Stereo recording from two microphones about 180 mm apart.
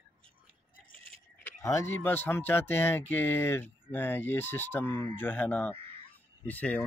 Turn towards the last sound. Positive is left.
turn(degrees=10)  # may be behind; listen again after turning